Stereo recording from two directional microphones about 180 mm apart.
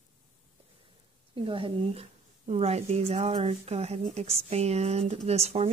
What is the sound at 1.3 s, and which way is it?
Speech, 30° right (ahead or behind).